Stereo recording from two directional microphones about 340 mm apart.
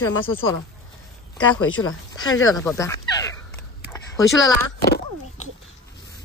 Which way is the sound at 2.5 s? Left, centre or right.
Centre.